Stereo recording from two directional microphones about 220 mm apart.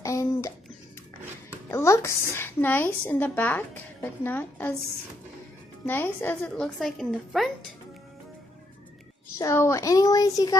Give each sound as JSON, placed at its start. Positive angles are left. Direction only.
{"t": 0.0, "sound": "a sound", "side_deg": 15}
{"t": 1.7, "sound": "a woman's voice", "side_deg": 15}
{"t": 5.9, "sound": "a woman's voice", "side_deg": 10}
{"t": 9.4, "sound": "a woman's voice", "side_deg": 10}